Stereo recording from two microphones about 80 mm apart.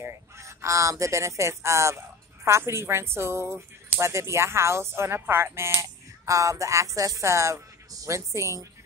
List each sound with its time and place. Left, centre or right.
0.0 s speech: right